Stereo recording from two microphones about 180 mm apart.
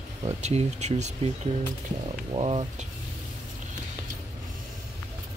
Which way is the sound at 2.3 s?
35° right (ahead or behind).